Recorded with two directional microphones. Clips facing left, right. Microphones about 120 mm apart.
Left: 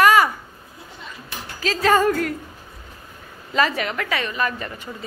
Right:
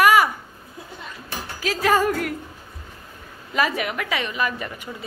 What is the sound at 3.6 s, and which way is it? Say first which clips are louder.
A woman's voice: left 2 dB; 10° right (ahead or behind).